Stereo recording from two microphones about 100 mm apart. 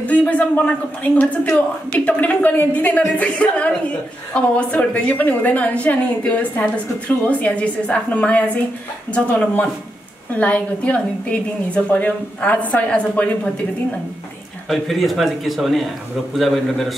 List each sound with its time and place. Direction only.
0.0 s a woman's voice: 15° left (ahead or behind)
14.7 s a man's voice: centre (ahead or behind)